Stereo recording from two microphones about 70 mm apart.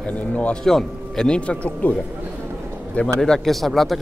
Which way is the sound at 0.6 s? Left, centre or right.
Centre.